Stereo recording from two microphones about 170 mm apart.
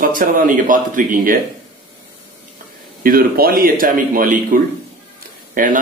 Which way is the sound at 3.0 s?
60° right (ahead or behind).